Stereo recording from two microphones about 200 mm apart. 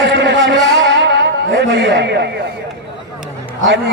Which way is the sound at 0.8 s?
65° right (ahead or behind).